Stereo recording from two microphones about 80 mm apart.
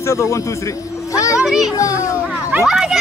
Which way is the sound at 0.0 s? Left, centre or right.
Left.